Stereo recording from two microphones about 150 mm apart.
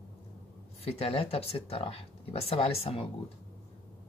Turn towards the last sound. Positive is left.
turn(degrees=40)  # may be behind; listen again after turning